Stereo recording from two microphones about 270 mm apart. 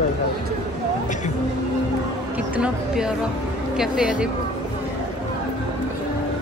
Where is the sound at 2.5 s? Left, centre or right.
Centre.